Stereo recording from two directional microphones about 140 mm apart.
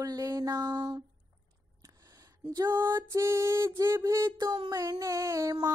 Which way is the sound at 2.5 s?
25° right (ahead or behind).